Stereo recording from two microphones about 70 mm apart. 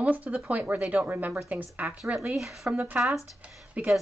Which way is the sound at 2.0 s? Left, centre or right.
Centre.